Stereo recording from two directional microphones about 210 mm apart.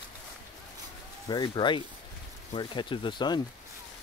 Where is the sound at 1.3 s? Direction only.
20° left (ahead or behind).